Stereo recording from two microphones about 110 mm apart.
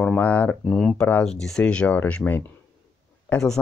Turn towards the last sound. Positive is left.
turn(degrees=15)  # may be behind; listen again after turning